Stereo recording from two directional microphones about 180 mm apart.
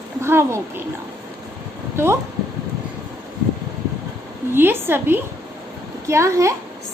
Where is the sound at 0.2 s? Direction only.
15° right (ahead or behind).